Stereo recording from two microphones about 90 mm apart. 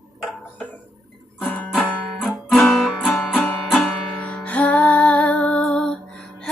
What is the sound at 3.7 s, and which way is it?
Music, 10° left (ahead or behind).